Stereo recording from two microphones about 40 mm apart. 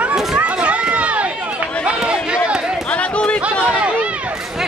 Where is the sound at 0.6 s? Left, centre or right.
Right.